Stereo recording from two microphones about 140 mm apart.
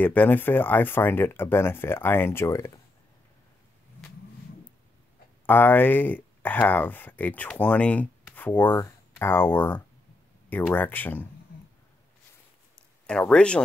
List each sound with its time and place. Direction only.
0.0 s speech: 10° left (ahead or behind)
5.5 s speech: 15° left (ahead or behind)
13.0 s speech: 5° left (ahead or behind)